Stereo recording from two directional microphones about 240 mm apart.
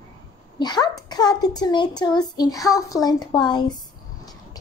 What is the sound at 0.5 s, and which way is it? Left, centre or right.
A child's voice, centre.